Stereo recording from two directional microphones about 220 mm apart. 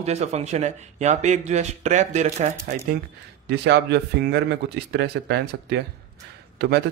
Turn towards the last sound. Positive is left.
turn(degrees=-50)  # may be behind; listen again after turning